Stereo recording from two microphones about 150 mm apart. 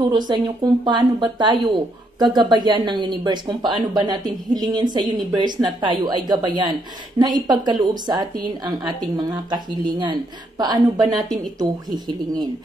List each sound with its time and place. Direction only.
0.3 s a woman's voice: 30° right (ahead or behind)